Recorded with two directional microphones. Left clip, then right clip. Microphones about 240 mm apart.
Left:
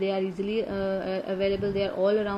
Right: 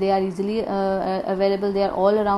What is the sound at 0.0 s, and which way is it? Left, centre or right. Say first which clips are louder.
A woman's voice: right 7 dB; centre.